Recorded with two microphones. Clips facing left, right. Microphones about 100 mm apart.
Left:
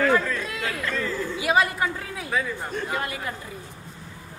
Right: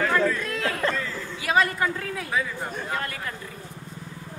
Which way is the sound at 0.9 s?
10° left (ahead or behind).